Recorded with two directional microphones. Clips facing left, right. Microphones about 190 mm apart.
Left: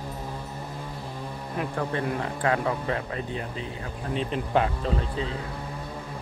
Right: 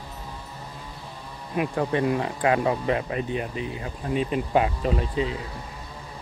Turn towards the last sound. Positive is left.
turn(degrees=-15)  # may be behind; listen again after turning